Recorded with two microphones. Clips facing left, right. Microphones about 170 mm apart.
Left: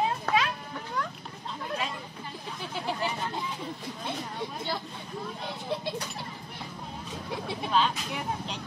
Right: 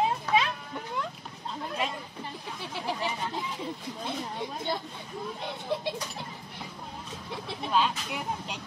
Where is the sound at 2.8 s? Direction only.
Centre (ahead or behind).